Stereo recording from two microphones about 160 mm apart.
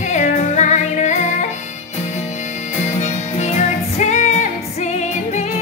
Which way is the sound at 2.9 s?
45° left (ahead or behind).